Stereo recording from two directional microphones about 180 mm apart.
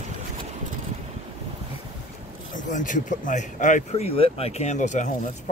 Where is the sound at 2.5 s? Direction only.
45° left (ahead or behind).